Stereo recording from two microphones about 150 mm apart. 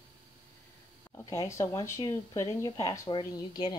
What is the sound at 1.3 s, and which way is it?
Speech, 20° left (ahead or behind).